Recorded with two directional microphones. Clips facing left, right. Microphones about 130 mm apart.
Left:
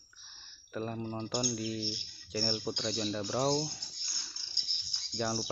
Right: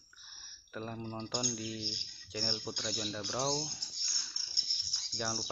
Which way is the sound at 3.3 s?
15° left (ahead or behind).